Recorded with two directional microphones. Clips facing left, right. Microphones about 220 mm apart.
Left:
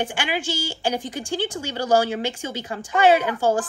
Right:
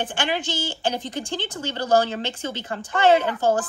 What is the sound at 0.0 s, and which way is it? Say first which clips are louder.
A woman's voice: even; 10° left (ahead or behind).